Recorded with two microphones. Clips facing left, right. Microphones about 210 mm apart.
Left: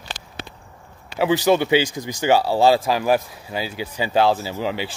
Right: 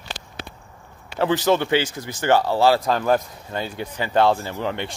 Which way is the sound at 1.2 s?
10° left (ahead or behind).